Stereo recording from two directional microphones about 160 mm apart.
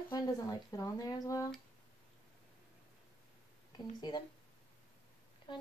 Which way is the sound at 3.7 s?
30° left (ahead or behind).